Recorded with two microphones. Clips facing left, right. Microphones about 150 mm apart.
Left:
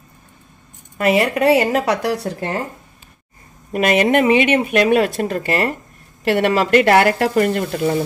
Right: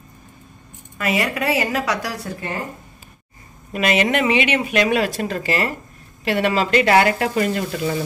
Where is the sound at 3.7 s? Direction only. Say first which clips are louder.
Left 4 dB; 45° left (ahead or behind).